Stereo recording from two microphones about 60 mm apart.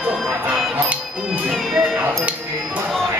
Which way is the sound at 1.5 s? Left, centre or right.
Centre.